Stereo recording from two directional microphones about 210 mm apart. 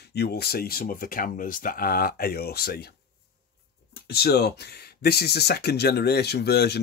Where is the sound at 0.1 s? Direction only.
50° left (ahead or behind).